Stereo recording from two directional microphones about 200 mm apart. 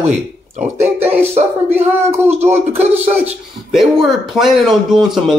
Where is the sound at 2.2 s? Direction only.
35° right (ahead or behind).